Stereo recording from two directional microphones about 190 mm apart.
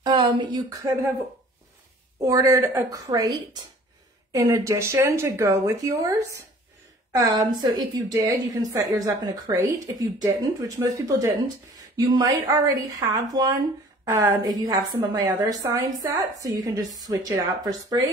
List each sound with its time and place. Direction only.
0.0 s speech: 25° right (ahead or behind)
2.1 s a woman's voice: 15° right (ahead or behind)